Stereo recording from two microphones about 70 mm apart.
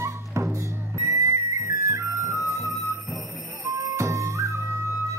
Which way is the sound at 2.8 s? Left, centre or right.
Centre.